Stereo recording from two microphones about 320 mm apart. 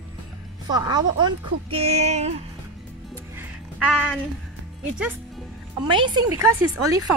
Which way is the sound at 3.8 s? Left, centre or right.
Centre.